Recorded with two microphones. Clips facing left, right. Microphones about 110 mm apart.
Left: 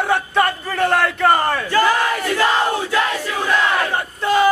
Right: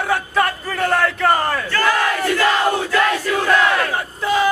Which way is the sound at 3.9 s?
Centre (ahead or behind).